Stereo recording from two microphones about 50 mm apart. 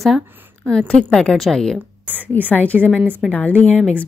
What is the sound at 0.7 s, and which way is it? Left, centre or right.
A woman's voice, centre.